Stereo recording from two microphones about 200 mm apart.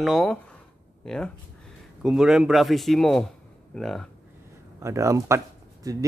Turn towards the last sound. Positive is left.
turn(degrees=-15)  # may be behind; listen again after turning